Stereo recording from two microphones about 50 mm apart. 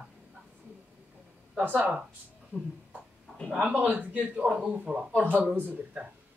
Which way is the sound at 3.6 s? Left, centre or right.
Right.